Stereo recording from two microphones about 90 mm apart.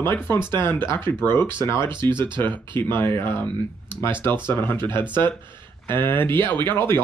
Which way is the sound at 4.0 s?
25° left (ahead or behind).